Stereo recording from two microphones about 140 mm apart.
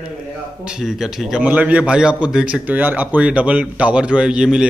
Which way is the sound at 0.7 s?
5° right (ahead or behind).